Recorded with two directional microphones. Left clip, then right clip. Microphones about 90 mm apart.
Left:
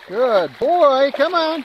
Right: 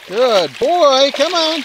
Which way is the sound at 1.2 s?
15° right (ahead or behind).